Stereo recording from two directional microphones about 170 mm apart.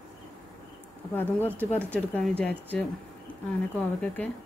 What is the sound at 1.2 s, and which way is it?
Speech, 10° left (ahead or behind).